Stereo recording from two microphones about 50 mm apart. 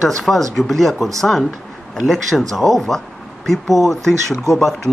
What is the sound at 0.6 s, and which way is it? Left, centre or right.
Speech, centre.